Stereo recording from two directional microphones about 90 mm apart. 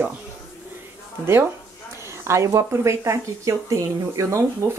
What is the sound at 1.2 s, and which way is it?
Speech, 30° right (ahead or behind).